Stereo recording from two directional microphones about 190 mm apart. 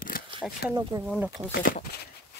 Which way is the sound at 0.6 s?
55° left (ahead or behind).